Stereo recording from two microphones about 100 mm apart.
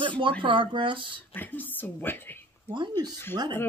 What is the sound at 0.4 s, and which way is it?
Speech, 55° right (ahead or behind).